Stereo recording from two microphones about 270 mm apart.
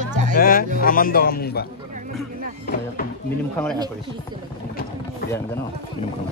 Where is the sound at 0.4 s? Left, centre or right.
Left.